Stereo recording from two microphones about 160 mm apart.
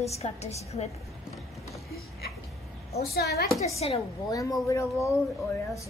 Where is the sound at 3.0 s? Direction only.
80° left.